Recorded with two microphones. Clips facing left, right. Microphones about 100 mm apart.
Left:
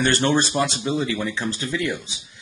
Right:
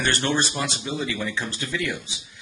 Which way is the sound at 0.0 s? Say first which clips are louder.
Left 4 dB; 35° left (ahead or behind).